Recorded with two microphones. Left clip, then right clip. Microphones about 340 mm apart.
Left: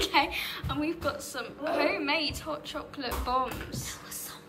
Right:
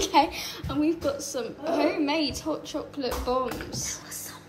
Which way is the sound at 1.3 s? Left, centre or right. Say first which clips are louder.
Right 3 dB; centre.